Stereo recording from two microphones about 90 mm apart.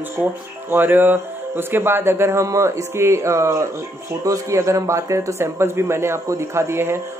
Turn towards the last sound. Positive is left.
turn(degrees=-30)  # may be behind; listen again after turning